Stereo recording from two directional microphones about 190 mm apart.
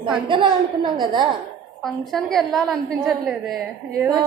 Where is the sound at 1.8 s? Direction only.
Centre (ahead or behind).